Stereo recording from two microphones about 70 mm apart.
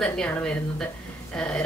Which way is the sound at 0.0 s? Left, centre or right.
Centre.